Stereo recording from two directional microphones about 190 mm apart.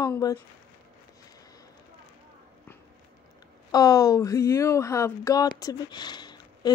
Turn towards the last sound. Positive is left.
turn(degrees=20)  # may be behind; listen again after turning